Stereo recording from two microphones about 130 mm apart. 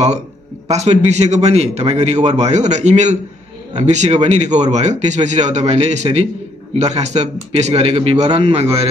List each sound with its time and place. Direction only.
0.7 s a man's voice: 55° right (ahead or behind)